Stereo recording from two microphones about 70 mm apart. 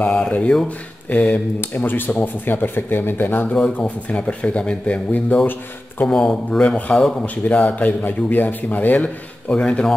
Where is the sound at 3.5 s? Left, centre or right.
Centre.